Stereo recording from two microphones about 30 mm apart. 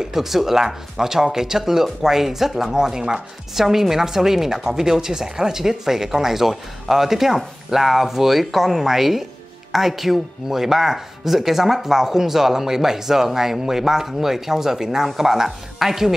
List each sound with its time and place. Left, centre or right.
0.1 s speech: centre